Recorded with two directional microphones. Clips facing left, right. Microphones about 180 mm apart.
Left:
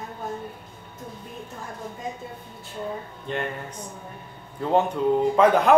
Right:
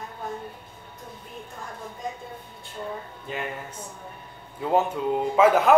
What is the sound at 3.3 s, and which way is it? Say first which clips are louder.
A man's voice: left 3 dB; 5° right (ahead or behind).